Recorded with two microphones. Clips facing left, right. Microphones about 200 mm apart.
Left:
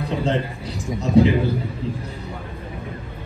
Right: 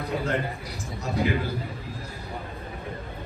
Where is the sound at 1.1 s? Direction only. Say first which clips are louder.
Left 10 dB; 30° left (ahead or behind).